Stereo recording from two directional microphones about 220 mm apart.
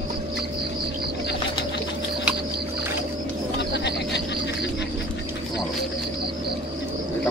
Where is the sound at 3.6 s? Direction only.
50° left (ahead or behind).